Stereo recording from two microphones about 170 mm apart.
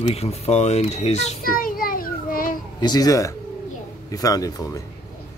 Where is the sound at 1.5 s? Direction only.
55° left (ahead or behind).